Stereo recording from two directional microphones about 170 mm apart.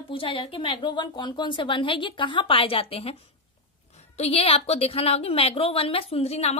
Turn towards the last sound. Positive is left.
turn(degrees=40)  # may be behind; listen again after turning